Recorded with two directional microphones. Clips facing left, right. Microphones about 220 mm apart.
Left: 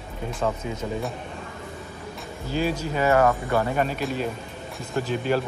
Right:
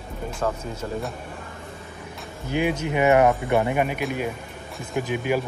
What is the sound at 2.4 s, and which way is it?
Speech, 20° right (ahead or behind).